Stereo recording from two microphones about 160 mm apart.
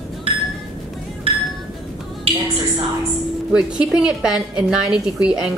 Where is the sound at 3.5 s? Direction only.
5° right (ahead or behind).